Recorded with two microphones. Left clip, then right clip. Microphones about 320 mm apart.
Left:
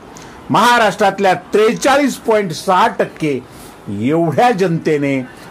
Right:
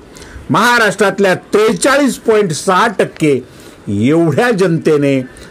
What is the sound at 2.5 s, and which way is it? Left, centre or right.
A man's voice, right.